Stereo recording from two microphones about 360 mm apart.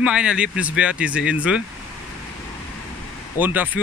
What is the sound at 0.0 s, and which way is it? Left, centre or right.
Speech, centre.